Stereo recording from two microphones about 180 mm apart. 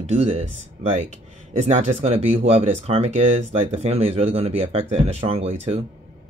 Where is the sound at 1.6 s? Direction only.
40° right (ahead or behind).